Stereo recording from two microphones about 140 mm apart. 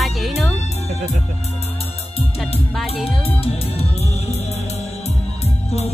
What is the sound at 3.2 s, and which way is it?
Music, 45° left (ahead or behind).